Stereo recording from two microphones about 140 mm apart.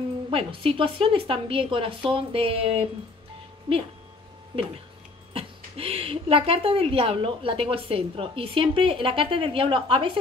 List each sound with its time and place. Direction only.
0.3 s speech: 40° right (ahead or behind)
5.3 s speech: 45° right (ahead or behind)